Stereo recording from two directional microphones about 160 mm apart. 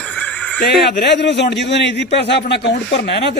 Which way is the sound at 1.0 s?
90° left.